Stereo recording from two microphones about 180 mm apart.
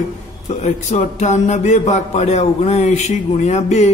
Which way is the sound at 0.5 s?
40° left (ahead or behind).